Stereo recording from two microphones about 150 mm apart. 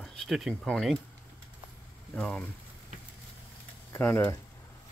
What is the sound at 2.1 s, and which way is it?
Speech, 5° left (ahead or behind).